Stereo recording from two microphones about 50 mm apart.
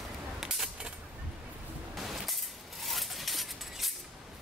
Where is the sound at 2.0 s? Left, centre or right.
Centre.